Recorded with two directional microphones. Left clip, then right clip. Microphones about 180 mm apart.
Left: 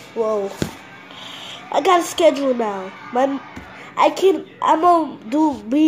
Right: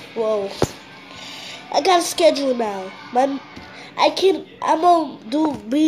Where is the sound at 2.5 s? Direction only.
10° left (ahead or behind).